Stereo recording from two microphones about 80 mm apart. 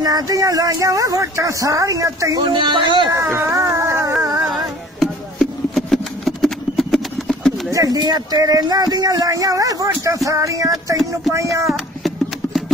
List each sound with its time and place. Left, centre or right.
0.0 s speech: right
2.4 s speech: right
3.1 s music: right
5.0 s a sound: centre
7.7 s speech: right
11.6 s a sound: centre